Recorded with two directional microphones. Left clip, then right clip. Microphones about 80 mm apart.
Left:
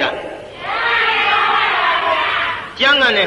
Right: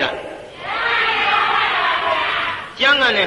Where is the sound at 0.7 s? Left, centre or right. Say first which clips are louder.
Left 2 dB; right.